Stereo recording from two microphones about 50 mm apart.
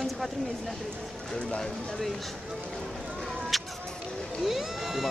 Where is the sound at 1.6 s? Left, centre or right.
Centre.